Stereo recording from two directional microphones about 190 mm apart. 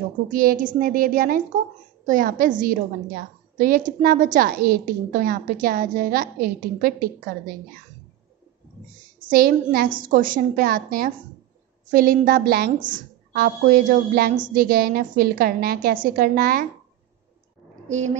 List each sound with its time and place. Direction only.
0.3 s a woman's voice: 50° right (ahead or behind)
9.3 s a woman's voice: 50° right (ahead or behind)
17.8 s speech: 40° right (ahead or behind)